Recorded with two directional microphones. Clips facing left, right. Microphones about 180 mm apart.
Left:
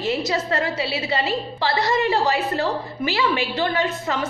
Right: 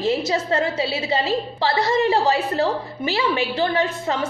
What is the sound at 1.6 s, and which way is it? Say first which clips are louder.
Speech: right 1 dB; 35° right (ahead or behind).